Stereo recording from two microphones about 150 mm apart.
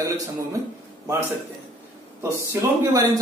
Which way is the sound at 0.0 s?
20° right (ahead or behind).